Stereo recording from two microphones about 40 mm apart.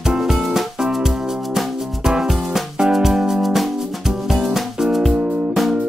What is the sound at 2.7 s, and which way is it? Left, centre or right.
Music, centre.